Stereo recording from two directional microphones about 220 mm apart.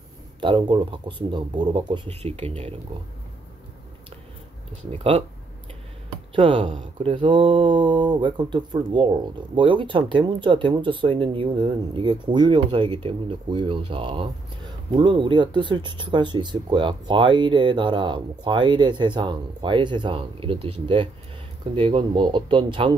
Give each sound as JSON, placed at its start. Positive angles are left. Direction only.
{"t": 0.4, "sound": "speech", "side_deg": -20}
{"t": 4.9, "sound": "speech", "side_deg": -25}
{"t": 6.3, "sound": "speech", "side_deg": -25}